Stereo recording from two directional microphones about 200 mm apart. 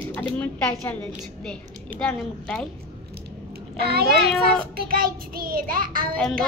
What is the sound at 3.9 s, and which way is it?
Child singing, 50° right (ahead or behind).